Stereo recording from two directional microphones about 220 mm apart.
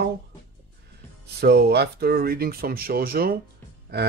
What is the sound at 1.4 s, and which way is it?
Speech, 50° right (ahead or behind).